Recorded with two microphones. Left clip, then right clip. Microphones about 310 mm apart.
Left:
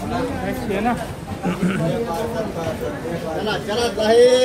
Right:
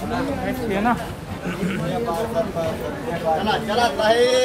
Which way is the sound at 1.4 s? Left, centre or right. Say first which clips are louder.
Left 3 dB; centre.